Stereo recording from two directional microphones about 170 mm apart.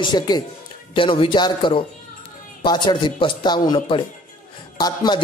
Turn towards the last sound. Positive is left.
turn(degrees=25)  # may be behind; listen again after turning